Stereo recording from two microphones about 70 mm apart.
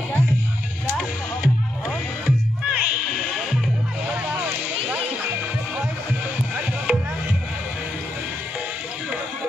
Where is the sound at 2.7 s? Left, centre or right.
Centre.